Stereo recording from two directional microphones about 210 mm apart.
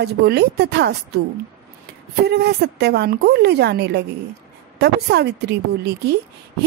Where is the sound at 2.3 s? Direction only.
50° right (ahead or behind).